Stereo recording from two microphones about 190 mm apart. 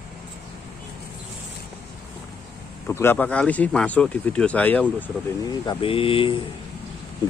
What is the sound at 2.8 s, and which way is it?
Speech, 10° left (ahead or behind).